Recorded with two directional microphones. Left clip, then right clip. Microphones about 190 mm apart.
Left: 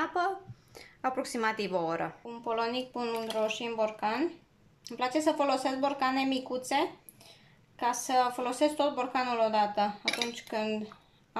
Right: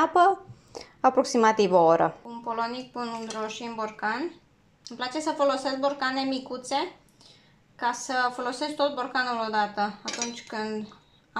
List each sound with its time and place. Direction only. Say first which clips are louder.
0.0 s a woman's voice: right 10 dB; 10° right (ahead or behind)
0.7 s a sound: right 11 dB; 10° right (ahead or behind)
1.3 s a woman's voice: right 11 dB; 15° right (ahead or behind)
2.2 s a woman's voice: right 2 dB; 15° left (ahead or behind)
7.8 s a woman's voice: right 1 dB; 15° left (ahead or behind)